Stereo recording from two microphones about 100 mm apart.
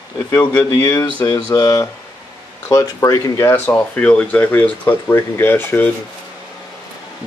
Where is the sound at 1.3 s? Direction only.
35° left (ahead or behind).